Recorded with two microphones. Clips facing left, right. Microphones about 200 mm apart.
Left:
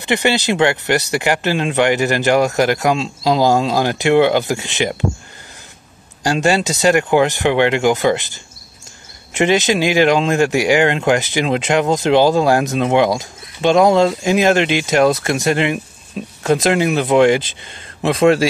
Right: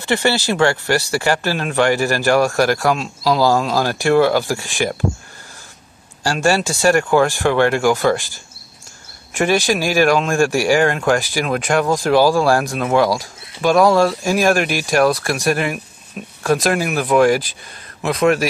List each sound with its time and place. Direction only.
0.0 s speech: 15° left (ahead or behind)
6.2 s speech: 20° left (ahead or behind)